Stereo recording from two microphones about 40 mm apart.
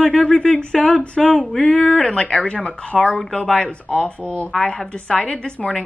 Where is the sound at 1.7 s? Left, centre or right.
Left.